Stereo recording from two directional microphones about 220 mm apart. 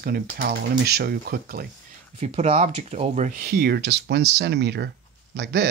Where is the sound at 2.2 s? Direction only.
30° right (ahead or behind).